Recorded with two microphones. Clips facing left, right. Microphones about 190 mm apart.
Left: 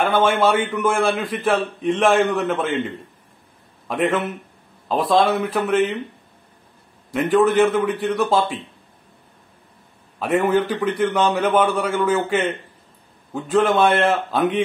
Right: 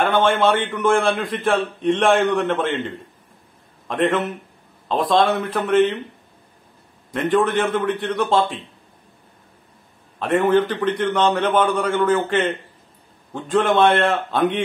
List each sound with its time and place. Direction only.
0.0 s a man's voice: 5° left (ahead or behind)
3.8 s a man's voice: 5° left (ahead or behind)
7.1 s a man's voice: 5° left (ahead or behind)
10.1 s a man's voice: 5° left (ahead or behind)